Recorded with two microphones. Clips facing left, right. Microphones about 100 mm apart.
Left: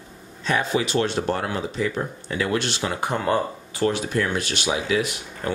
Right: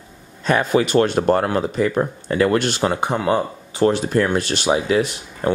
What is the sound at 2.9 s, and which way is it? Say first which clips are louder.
Speech: right 1 dB; 20° right (ahead or behind).